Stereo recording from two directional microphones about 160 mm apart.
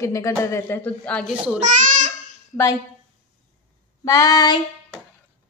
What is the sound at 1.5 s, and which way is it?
Babbling, 55° right (ahead or behind).